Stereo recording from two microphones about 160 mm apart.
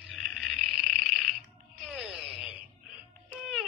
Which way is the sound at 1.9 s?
5° right (ahead or behind).